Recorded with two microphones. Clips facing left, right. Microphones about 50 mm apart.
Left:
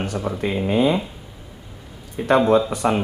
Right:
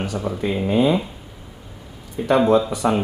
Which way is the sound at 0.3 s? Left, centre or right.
Centre.